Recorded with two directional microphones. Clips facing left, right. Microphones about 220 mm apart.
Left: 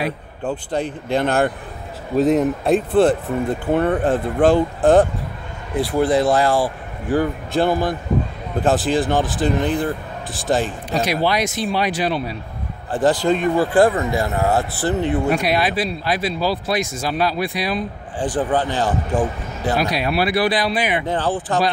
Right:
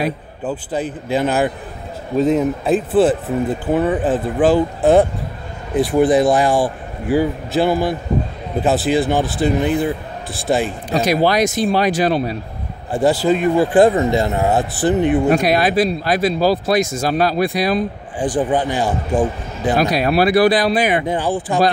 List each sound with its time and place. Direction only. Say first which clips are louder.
0.4 s speech: even; 5° right (ahead or behind)
5.8 s speech: right 4 dB; 20° right (ahead or behind)
10.9 s speech: right 5 dB; 45° right (ahead or behind)
12.9 s speech: right 2 dB; 10° right (ahead or behind)
13.7 s speech: right 4 dB; 20° right (ahead or behind)
15.2 s speech: right 4 dB; 45° right (ahead or behind)
18.2 s speech: right 2 dB; 15° right (ahead or behind)
19.8 s speech: right 6 dB; 45° right (ahead or behind)
21.1 s speech: right 2 dB; 10° right (ahead or behind)